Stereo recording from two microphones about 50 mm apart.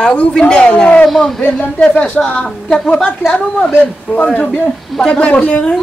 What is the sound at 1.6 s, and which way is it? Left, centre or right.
Speech, left.